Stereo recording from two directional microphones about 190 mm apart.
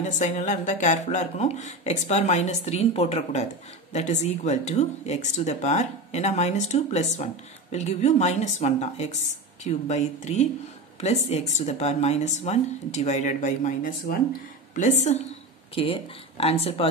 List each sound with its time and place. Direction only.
0.0 s speech: 40° left (ahead or behind)